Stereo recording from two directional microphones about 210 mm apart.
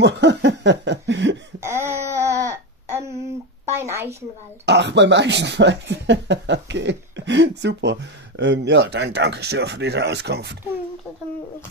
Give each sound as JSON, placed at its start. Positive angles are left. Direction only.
{"t": 0.0, "sound": "chuckle", "side_deg": -55}
{"t": 1.6, "sound": "a sound", "side_deg": -10}
{"t": 4.6, "sound": "speech", "side_deg": -55}